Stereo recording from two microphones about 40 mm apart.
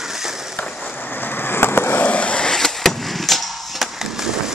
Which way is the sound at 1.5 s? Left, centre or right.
Left.